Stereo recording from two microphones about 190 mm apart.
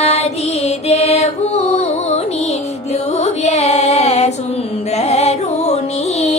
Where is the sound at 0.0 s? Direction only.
35° left (ahead or behind).